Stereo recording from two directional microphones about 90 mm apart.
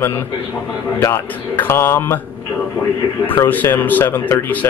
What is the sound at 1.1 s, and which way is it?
Speech, 25° left (ahead or behind).